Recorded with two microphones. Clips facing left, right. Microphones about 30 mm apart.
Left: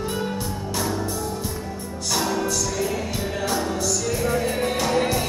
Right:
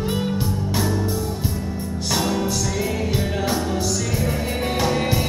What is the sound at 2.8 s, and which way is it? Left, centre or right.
Music, centre.